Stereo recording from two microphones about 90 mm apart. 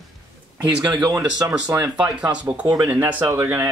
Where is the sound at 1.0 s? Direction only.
45° right (ahead or behind).